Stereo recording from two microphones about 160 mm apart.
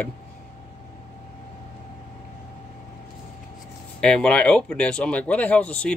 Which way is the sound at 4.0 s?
5° left (ahead or behind).